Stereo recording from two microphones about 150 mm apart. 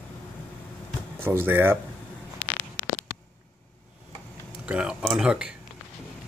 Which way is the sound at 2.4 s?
10° left (ahead or behind).